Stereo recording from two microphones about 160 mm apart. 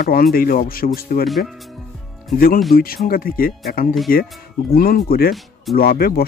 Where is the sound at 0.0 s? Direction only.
65° left (ahead or behind).